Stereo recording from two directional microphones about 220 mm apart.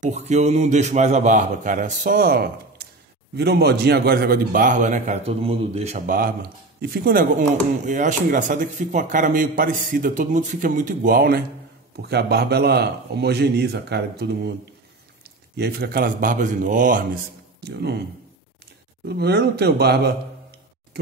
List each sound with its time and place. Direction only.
0.0 s speech: 30° right (ahead or behind); by 14.5 s 50° right (ahead or behind)
15.5 s speech: 45° right (ahead or behind)
19.0 s speech: 45° right (ahead or behind)